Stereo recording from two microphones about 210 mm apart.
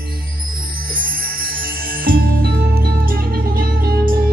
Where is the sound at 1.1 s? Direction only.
45° right (ahead or behind).